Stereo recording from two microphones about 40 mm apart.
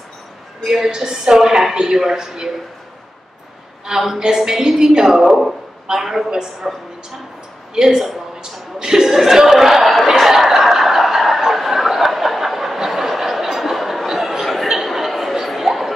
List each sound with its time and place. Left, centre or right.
0.7 s a woman's voice: centre
0.9 s music: centre
4.2 s music: centre
6.7 s a woman's voice: centre
7.7 s speech: centre
8.4 s a sound: centre